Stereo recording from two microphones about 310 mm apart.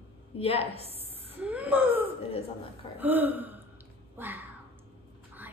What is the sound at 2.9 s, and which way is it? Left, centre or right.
Gasp, centre.